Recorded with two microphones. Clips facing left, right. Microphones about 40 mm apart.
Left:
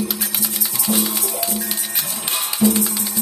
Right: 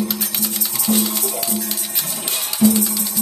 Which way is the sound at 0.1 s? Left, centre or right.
Centre.